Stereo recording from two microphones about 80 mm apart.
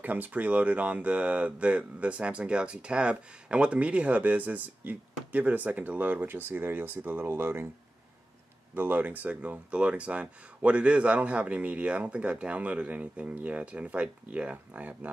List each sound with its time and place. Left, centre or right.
0.0 s speech: right
8.7 s speech: right